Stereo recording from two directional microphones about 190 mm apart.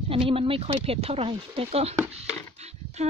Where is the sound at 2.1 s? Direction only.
35° right (ahead or behind).